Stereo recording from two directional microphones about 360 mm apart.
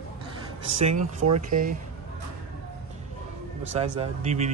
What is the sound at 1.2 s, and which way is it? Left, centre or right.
Speech, right.